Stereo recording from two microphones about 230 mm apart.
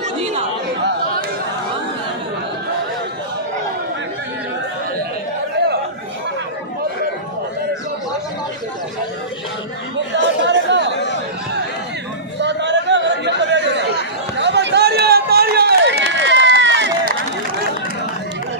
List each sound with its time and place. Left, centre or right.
10.1 s chatter: right
12.4 s chatter: right
14.3 s run: right